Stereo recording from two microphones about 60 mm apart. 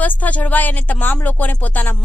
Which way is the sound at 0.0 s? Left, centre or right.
Left.